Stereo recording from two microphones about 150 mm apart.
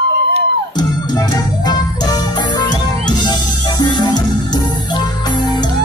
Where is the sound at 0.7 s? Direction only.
30° left (ahead or behind).